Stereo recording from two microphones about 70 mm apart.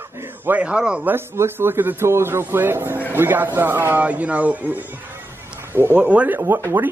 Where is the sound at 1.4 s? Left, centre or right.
Right.